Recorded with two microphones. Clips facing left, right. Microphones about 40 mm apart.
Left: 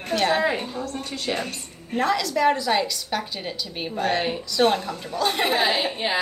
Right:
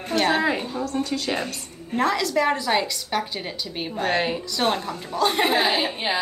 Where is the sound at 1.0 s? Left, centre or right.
Right.